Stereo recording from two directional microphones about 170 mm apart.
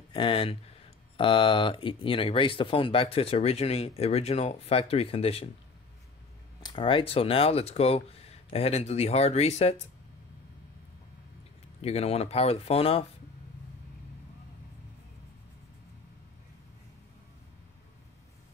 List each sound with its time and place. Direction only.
0.1 s speech: 30° left (ahead or behind)
6.6 s speech: 30° left (ahead or behind)
11.8 s speech: 40° left (ahead or behind)